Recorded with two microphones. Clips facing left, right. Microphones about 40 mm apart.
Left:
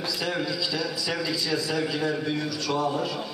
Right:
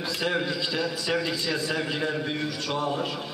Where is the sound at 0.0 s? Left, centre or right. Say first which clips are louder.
Right 1 dB; right.